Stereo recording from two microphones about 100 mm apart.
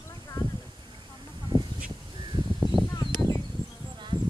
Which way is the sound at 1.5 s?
45° right (ahead or behind).